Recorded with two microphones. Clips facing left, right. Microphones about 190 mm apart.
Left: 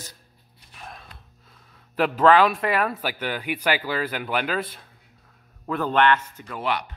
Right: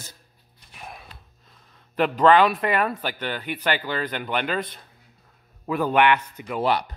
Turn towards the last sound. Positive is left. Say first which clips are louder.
# right 4 dB
turn(degrees=-35)  # may be behind; listen again after turning